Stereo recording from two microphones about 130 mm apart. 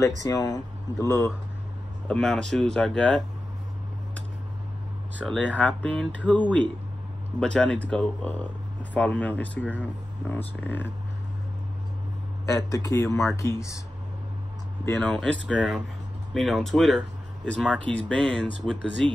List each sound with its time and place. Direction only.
0.0 s speech: 30° left (ahead or behind)
1.0 s speech: 20° left (ahead or behind)
2.0 s speech: 5° left (ahead or behind)
5.2 s speech: 10° left (ahead or behind)
12.6 s speech: 25° left (ahead or behind)
15.0 s speech: 5° left (ahead or behind)